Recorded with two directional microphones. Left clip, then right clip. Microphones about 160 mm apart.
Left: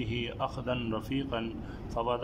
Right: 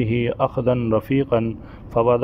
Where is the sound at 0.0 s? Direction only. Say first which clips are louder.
Right 13 dB; 40° right (ahead or behind).